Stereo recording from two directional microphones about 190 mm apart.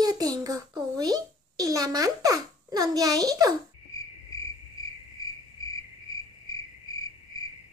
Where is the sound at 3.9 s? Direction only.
15° left (ahead or behind).